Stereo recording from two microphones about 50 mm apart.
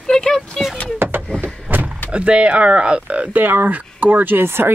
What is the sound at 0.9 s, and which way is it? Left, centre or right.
Vehicle, right.